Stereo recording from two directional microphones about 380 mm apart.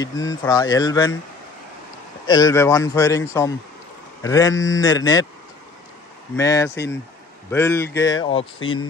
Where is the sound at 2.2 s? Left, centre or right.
Centre.